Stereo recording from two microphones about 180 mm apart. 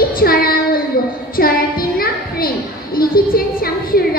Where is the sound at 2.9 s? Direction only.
55° left (ahead or behind).